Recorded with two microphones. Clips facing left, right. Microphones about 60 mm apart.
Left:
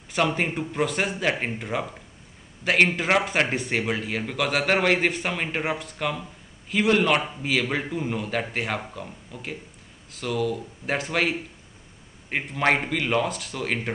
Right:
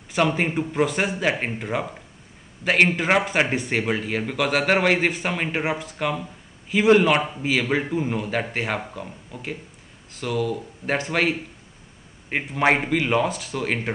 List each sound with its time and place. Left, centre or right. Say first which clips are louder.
0.1 s speech: right 2 dB; centre